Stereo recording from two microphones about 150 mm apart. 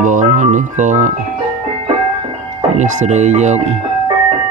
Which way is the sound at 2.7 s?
50° right (ahead or behind).